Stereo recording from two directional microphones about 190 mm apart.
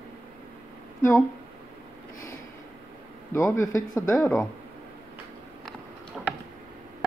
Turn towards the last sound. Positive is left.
turn(degrees=0)  # may be behind; listen again after turning